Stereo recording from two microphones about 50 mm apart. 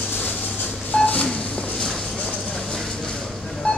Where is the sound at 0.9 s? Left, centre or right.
Left.